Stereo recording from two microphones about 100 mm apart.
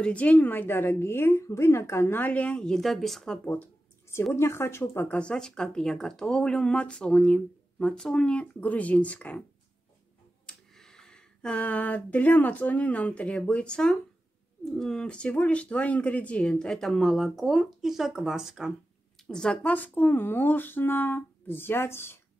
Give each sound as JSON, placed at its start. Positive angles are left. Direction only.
{"t": 0.0, "sound": "a woman's voice", "side_deg": 15}
{"t": 4.1, "sound": "a woman's voice", "side_deg": 25}
{"t": 5.0, "sound": "speech", "side_deg": 10}
{"t": 10.4, "sound": "speech", "side_deg": 5}
{"t": 19.2, "sound": "a woman's voice", "side_deg": 10}